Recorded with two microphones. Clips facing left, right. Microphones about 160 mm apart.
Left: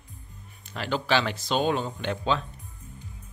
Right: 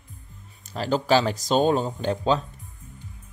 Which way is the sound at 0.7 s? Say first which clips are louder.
Right 5 dB; 40° right (ahead or behind).